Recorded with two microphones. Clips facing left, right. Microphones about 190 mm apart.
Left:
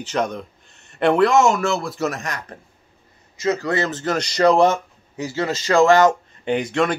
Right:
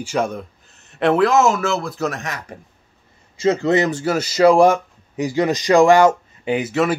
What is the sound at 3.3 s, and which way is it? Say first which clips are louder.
Speech: right 5 dB; 25° right (ahead or behind).